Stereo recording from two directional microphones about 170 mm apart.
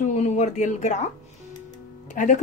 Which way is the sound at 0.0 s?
45° left (ahead or behind).